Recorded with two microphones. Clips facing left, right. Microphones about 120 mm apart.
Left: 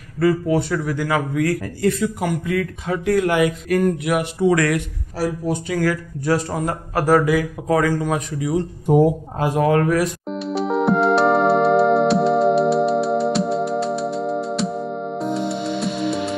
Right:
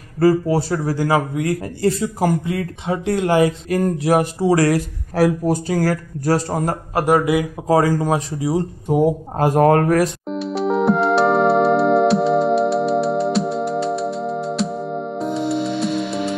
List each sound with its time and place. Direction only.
0.2 s speech: 35° right (ahead or behind)
5.2 s a man's voice: 60° right (ahead or behind)
5.5 s speech: 35° right (ahead or behind)
7.0 s speech: 25° right (ahead or behind)
9.4 s speech: 45° right (ahead or behind)
10.3 s music: centre (ahead or behind)